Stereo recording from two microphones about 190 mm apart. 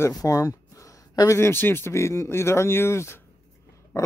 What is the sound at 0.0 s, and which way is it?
Speech, 20° left (ahead or behind).